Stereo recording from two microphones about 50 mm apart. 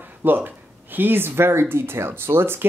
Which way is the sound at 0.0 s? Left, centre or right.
Right.